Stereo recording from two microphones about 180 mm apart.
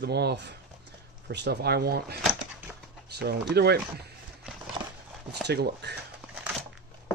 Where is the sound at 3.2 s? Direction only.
65° right (ahead or behind).